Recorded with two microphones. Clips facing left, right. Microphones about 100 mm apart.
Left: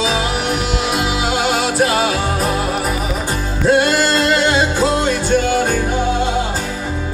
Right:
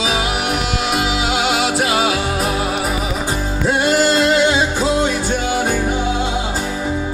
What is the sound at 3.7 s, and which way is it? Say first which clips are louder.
Music: even; 60° left (ahead or behind).